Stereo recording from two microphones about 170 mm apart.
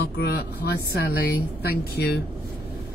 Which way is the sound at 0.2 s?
70° left (ahead or behind).